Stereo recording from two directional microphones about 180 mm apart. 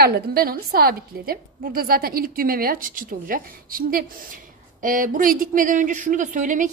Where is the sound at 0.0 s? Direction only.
60° right (ahead or behind).